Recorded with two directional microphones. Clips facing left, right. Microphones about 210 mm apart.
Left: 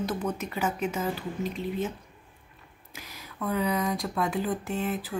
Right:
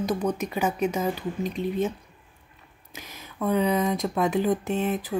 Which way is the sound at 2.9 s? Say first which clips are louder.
Right 4 dB; 20° right (ahead or behind).